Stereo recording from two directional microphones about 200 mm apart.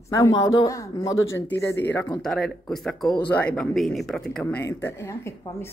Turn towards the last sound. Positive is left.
turn(degrees=15)  # may be behind; listen again after turning